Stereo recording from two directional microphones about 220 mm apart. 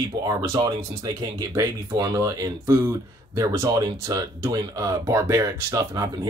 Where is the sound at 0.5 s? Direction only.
15° right (ahead or behind).